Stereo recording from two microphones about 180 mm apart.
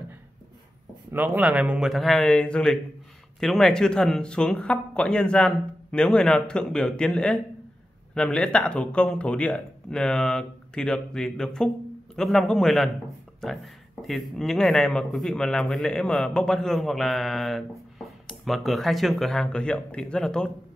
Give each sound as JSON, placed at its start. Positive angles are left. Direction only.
{"t": 1.1, "sound": "speech", "side_deg": -10}
{"t": 14.0, "sound": "speech", "side_deg": 0}